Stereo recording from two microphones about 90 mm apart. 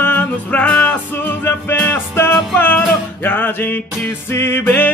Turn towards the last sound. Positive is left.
turn(degrees=20)  # may be behind; listen again after turning